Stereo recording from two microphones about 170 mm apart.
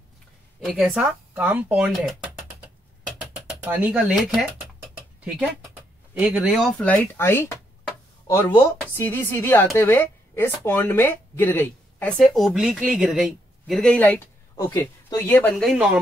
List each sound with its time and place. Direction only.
0.7 s speech: 5° right (ahead or behind)
3.4 s speech: 10° right (ahead or behind)
6.1 s speech: 10° right (ahead or behind)
6.8 s speech: 10° left (ahead or behind)
8.8 s speech: 10° left (ahead or behind)
15.5 s speech: centre (ahead or behind)